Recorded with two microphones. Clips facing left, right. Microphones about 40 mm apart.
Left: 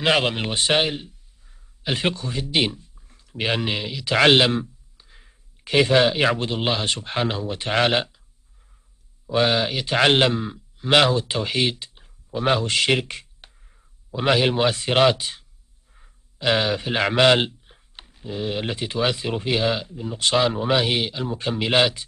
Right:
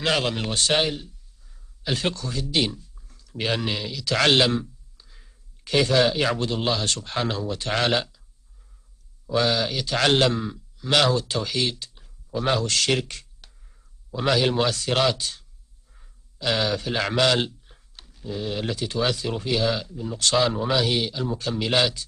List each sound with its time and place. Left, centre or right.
0.0 s a man's voice: left
9.3 s a man's voice: left